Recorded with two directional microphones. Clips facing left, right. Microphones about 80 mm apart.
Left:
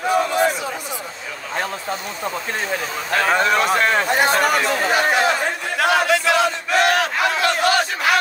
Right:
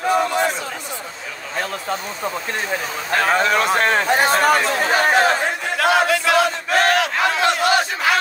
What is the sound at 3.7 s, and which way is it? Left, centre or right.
Chatter, right.